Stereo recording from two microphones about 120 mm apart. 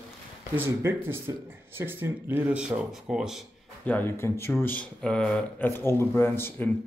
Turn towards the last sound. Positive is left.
turn(degrees=20)  # may be behind; listen again after turning